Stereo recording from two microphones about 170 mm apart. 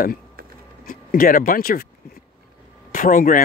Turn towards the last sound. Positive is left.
turn(degrees=55)  # may be behind; listen again after turning